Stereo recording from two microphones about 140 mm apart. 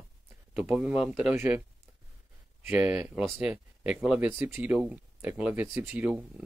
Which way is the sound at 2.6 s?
10° right (ahead or behind).